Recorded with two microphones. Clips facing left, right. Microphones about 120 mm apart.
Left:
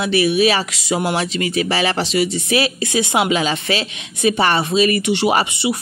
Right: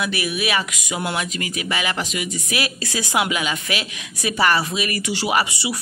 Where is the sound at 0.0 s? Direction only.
30° left (ahead or behind).